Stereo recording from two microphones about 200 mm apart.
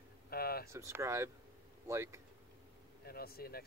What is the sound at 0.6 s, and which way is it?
Speech, 15° right (ahead or behind).